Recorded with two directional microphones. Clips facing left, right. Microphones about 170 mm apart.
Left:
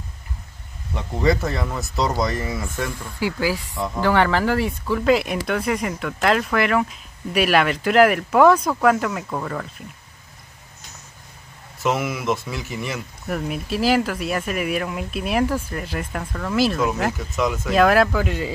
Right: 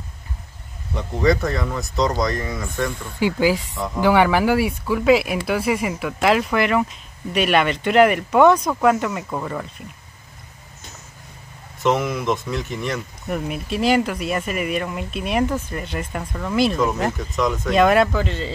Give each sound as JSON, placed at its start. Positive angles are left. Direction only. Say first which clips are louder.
{"t": 0.9, "sound": "speech", "louder": "right 2 dB", "side_deg": 5}
{"t": 3.2, "sound": "speech", "louder": "right 4 dB", "side_deg": -20}
{"t": 11.8, "sound": "speech", "louder": "right 3 dB", "side_deg": 5}